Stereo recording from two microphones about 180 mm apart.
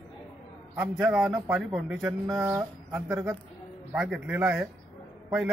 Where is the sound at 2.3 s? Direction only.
15° right (ahead or behind).